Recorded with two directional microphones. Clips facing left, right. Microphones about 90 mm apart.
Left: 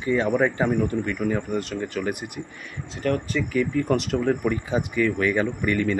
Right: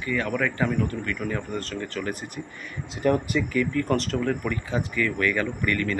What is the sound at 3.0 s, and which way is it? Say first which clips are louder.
Speech: right 2 dB; 15° right (ahead or behind).